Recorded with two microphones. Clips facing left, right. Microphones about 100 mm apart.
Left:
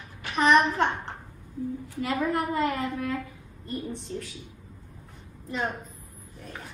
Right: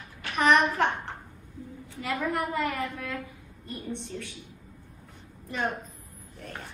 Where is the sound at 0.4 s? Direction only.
25° left (ahead or behind).